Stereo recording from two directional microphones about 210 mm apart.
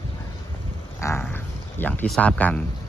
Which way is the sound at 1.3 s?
10° left (ahead or behind).